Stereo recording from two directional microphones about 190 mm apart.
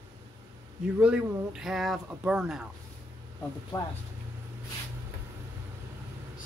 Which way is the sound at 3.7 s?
15° left (ahead or behind).